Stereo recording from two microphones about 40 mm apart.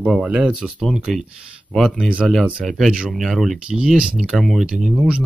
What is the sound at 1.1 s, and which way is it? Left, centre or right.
Speech, centre.